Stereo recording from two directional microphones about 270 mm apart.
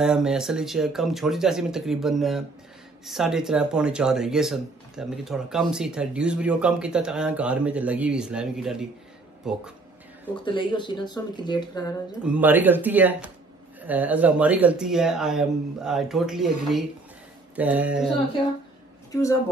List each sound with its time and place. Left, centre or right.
0.0 s speech: centre
10.4 s speech: centre
12.3 s speech: centre